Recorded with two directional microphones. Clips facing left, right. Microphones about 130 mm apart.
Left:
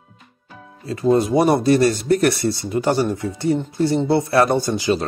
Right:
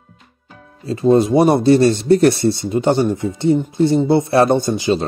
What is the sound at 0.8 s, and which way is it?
Speech, 25° right (ahead or behind).